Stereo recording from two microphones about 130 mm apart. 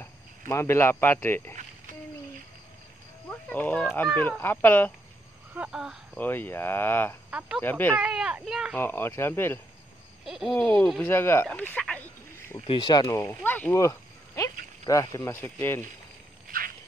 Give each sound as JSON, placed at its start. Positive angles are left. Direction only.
{"t": 0.5, "sound": "speech", "side_deg": 20}
{"t": 3.3, "sound": "speech", "side_deg": 15}
{"t": 5.5, "sound": "speech", "side_deg": -10}
{"t": 6.1, "sound": "speech", "side_deg": 15}
{"t": 7.2, "sound": "speech", "side_deg": -10}
{"t": 7.6, "sound": "speech", "side_deg": 15}
{"t": 7.9, "sound": "speech", "side_deg": -5}
{"t": 8.7, "sound": "speech", "side_deg": 15}
{"t": 10.2, "sound": "speech", "side_deg": 0}
{"t": 11.1, "sound": "speech", "side_deg": 20}
{"t": 12.5, "sound": "speech", "side_deg": 40}
{"t": 13.7, "sound": "a sound", "side_deg": 25}
{"t": 14.9, "sound": "speech", "side_deg": 25}
{"t": 16.5, "sound": "a sound", "side_deg": -90}